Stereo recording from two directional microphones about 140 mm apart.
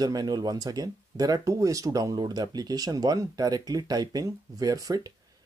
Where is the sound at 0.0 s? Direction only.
30° right (ahead or behind).